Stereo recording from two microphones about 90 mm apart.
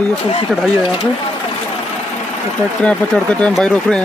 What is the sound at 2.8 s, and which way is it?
Speech, 10° left (ahead or behind).